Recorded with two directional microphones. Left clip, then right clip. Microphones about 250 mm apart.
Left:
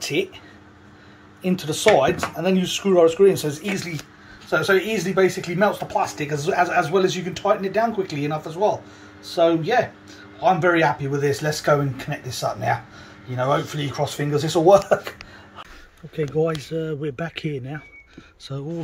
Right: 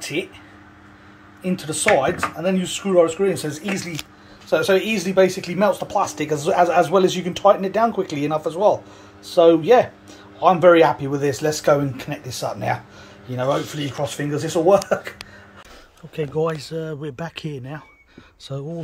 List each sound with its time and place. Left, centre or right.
0.2 s speech: centre
1.4 s speech: centre
4.5 s speech: centre
5.2 s speech: right
5.8 s speech: centre
16.2 s speech: centre